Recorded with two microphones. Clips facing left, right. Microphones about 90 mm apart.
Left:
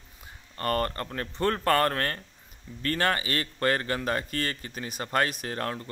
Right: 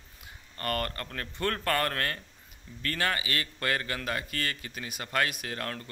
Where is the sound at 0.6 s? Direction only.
30° left (ahead or behind).